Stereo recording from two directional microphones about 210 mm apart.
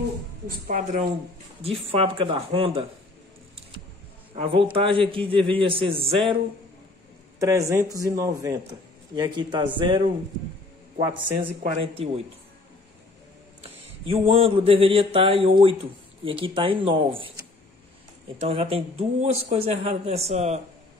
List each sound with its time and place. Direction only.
0.7 s speech: 35° right (ahead or behind)
4.4 s speech: 25° right (ahead or behind)
7.3 s a man's voice: 15° right (ahead or behind)
11.4 s speech: 35° right (ahead or behind)
13.6 s speech: 25° right (ahead or behind)
18.4 s speech: 30° right (ahead or behind)